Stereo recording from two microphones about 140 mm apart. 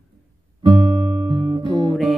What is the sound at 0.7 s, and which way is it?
Guitar, 45° right (ahead or behind).